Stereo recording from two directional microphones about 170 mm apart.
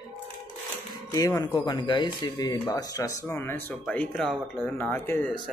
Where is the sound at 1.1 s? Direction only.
20° left (ahead or behind).